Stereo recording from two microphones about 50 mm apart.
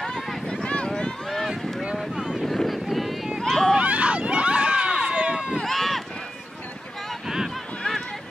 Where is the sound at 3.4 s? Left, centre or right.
Centre.